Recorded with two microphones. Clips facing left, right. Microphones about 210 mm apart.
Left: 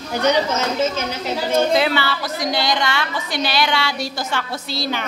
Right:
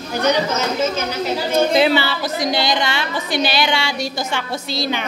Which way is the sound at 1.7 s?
25° right (ahead or behind).